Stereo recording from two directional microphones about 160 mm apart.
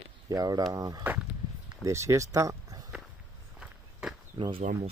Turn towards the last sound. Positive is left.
turn(degrees=-35)  # may be behind; listen again after turning